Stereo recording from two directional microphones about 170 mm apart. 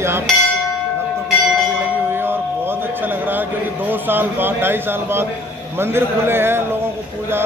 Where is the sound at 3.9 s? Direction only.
10° right (ahead or behind).